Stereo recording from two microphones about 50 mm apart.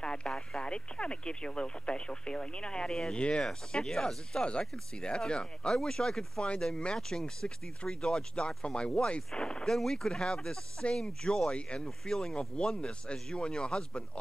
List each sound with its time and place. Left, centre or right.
0.0 s radio: centre
0.3 s speech: centre
0.7 s speech: left
3.2 s speech: left
3.4 s speech: centre
12.0 s speech: centre